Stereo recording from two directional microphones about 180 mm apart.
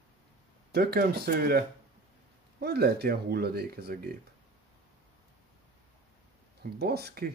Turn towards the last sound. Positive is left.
turn(degrees=-60)  # may be behind; listen again after turning